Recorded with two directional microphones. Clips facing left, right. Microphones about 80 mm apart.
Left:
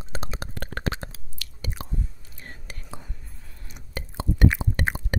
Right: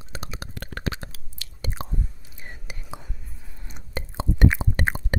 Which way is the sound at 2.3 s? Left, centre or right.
Centre.